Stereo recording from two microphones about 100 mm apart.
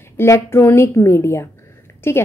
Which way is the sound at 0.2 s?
25° left (ahead or behind).